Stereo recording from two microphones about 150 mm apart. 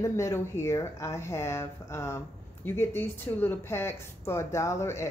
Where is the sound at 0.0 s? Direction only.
20° left (ahead or behind).